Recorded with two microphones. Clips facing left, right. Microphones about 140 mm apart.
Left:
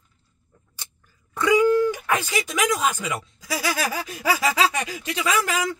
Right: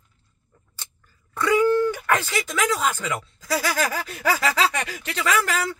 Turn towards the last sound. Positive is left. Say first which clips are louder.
# even
turn(degrees=15)  # may be behind; listen again after turning